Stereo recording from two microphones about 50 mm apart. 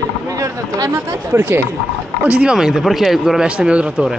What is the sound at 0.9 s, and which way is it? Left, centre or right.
Speech, right.